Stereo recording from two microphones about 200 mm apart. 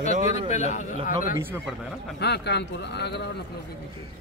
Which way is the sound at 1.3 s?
10° right (ahead or behind).